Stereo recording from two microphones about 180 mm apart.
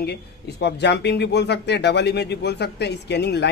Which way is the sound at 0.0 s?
65° left (ahead or behind).